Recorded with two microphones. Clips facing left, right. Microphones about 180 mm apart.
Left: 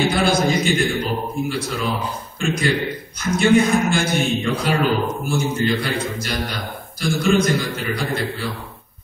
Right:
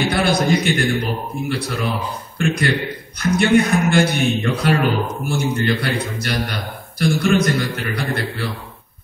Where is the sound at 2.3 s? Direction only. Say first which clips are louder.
Right 1 dB; 60° right (ahead or behind).